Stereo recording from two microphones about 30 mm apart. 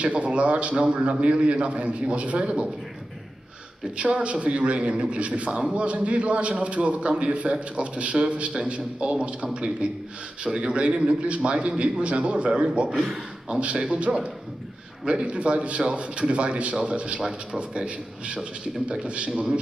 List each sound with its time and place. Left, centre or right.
0.0 s a man's voice: right
3.9 s speech: right
5.5 s a man's voice: right
5.8 s a man's voice: right
10.8 s a man's voice: right